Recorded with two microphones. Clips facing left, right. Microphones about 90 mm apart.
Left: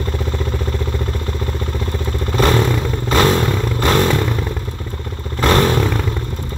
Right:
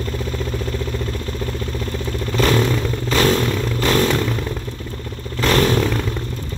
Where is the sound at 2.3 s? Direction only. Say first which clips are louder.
Left 2 dB; 40° left (ahead or behind).